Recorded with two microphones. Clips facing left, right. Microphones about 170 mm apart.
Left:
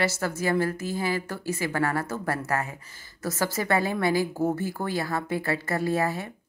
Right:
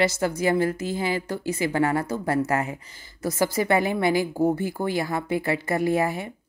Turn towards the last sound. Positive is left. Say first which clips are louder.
# right 3 dB
turn(degrees=-15)  # may be behind; listen again after turning